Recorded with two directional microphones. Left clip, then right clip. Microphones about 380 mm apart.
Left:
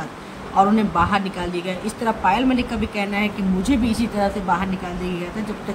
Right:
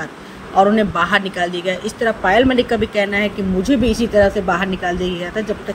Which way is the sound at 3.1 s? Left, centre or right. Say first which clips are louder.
Right 5 dB; centre.